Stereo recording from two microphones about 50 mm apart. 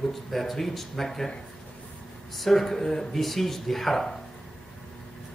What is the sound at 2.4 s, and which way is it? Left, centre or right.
Speech, centre.